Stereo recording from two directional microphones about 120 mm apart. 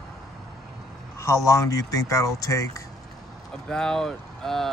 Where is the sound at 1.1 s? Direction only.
25° left (ahead or behind).